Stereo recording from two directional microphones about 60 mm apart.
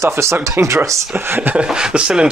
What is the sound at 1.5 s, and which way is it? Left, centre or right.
Speech, centre.